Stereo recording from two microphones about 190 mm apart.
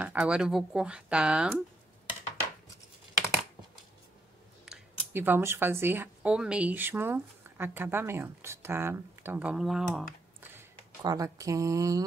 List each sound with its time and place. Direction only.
0.0 s speech: 5° right (ahead or behind)
4.6 s speech: 5° right (ahead or behind)
11.0 s speech: 20° right (ahead or behind)